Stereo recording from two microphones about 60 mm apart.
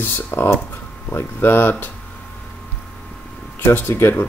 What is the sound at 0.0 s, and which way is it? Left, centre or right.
Speech, left.